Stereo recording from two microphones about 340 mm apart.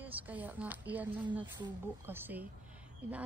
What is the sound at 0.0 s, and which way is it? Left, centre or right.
Speech, centre.